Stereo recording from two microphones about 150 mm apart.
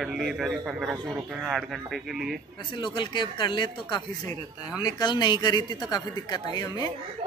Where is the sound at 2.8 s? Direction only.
30° left (ahead or behind).